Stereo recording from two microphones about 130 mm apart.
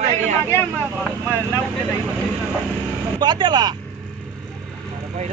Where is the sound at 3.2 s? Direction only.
35° right (ahead or behind).